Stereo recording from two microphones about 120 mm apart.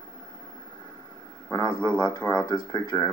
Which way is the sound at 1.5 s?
35° left (ahead or behind).